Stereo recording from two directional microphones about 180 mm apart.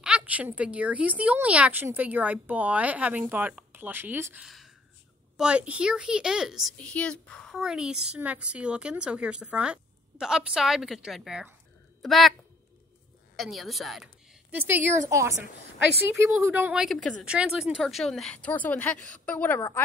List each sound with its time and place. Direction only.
0.0 s a woman's voice: 5° right (ahead or behind)
13.4 s a woman's voice: centre (ahead or behind)